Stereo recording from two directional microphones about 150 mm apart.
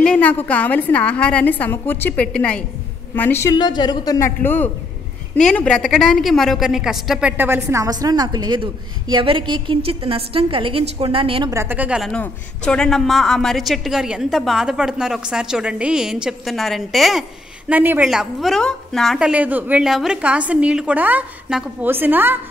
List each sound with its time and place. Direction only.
0.0 s a woman's voice: 10° left (ahead or behind)
3.5 s a woman's voice: 30° left (ahead or behind)
4.4 s a woman's voice: 15° left (ahead or behind); by 11.5 s 35° right (ahead or behind)
11.5 s a woman's voice: 15° right (ahead or behind)
12.1 s a woman's voice: 5° left (ahead or behind)
17.6 s a woman's voice: 10° right (ahead or behind)